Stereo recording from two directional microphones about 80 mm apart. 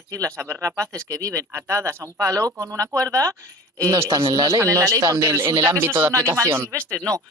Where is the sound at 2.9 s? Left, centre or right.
Centre.